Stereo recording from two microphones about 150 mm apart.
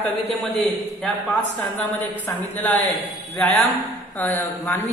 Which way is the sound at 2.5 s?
10° left (ahead or behind).